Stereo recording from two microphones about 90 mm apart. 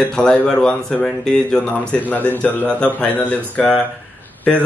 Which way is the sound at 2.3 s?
20° left (ahead or behind).